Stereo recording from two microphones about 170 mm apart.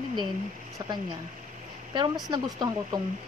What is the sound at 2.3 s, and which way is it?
Speech, 25° right (ahead or behind).